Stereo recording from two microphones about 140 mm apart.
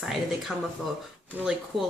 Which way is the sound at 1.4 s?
5° right (ahead or behind).